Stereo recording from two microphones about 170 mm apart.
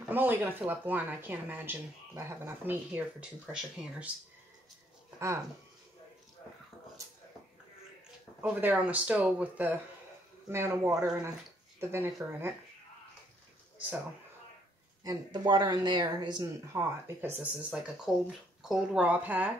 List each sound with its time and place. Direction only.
0.1 s speech: 10° right (ahead or behind)
8.4 s speech: 10° right (ahead or behind)
13.7 s speech: 10° right (ahead or behind)
15.0 s speech: 25° right (ahead or behind)
16.7 s speech: 15° right (ahead or behind)